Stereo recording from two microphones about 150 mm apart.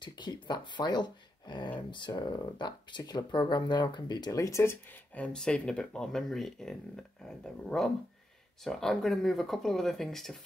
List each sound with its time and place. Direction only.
0.0 s speech: 30° left (ahead or behind); by 10.4 s centre (ahead or behind)